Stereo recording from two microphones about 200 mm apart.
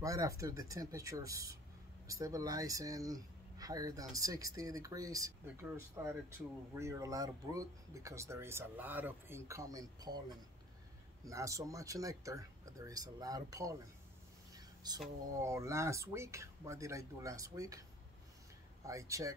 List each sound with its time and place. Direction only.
0.0 s speech: 15° right (ahead or behind)
11.2 s speech: 15° right (ahead or behind)
14.5 s a sound: 20° right (ahead or behind)
15.4 s speech: 15° right (ahead or behind)
18.9 s speech: 15° right (ahead or behind)